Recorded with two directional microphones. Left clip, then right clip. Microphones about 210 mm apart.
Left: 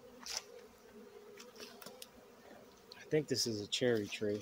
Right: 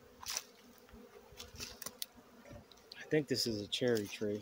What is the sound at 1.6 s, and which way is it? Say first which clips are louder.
Bee: right 6 dB; 30° right (ahead or behind).